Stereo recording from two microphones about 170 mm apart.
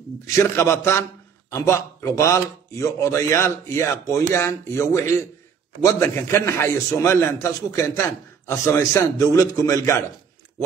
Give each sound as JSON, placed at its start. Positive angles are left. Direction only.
{"t": 0.4, "sound": "a man's voice", "side_deg": 15}